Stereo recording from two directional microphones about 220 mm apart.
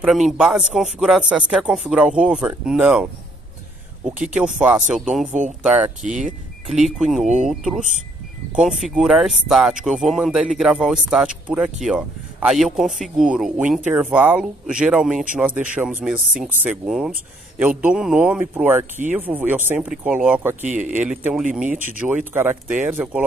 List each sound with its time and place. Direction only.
0.0 s speech: centre (ahead or behind)
6.0 s speech: 35° right (ahead or behind)
6.7 s speech: centre (ahead or behind)